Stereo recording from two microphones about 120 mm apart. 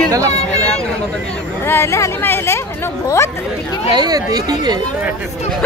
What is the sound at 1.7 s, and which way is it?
Speech, 20° left (ahead or behind).